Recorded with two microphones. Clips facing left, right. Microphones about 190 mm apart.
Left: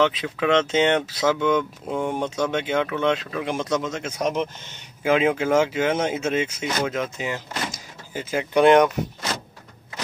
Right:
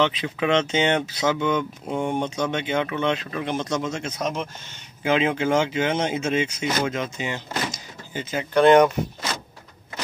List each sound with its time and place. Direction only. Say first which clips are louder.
0.0 s speech: left 1 dB; centre (ahead or behind)
4.2 s speech: left 5 dB; 15° left (ahead or behind)
5.0 s speech: left 2 dB; 5° left (ahead or behind)